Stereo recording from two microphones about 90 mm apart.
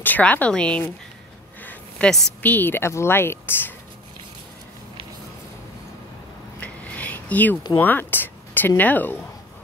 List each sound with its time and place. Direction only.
0.0 s speech: 20° left (ahead or behind)
1.6 s a sound: 20° left (ahead or behind)
2.0 s a woman's voice: 5° left (ahead or behind)
2.4 s a woman's voice: 20° left (ahead or behind)
6.6 s a sound: 15° left (ahead or behind)
7.8 s speech: 20° left (ahead or behind)